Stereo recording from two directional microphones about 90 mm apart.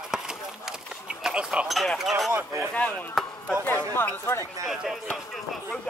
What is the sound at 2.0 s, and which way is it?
Speech, centre (ahead or behind).